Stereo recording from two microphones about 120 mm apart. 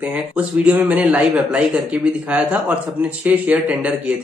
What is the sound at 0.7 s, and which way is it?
Speech, 10° right (ahead or behind).